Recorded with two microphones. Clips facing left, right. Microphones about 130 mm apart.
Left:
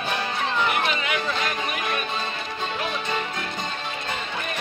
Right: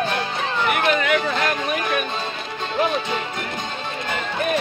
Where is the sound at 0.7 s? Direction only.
60° right (ahead or behind).